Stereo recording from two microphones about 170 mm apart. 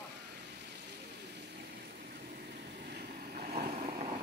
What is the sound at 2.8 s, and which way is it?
Vehicle, 70° right (ahead or behind).